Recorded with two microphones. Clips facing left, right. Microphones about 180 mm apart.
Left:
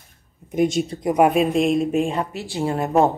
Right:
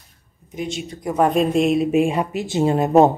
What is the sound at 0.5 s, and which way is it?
Speech, 50° left (ahead or behind).